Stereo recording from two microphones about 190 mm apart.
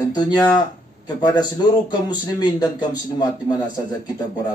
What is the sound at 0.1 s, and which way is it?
Speech, 20° left (ahead or behind).